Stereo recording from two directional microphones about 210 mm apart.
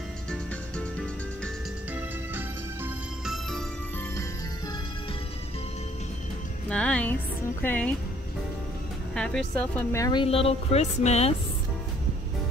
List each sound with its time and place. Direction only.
0.3 s music: 5° left (ahead or behind)
2.0 s music: 10° right (ahead or behind)
6.7 s music: 5° left (ahead or behind)
7.6 s speech: 10° left (ahead or behind)
9.1 s a woman's voice: 5° left (ahead or behind); by 11.3 s 30° left (ahead or behind)